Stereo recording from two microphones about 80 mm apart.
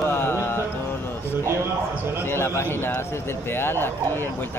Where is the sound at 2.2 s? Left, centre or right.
Left.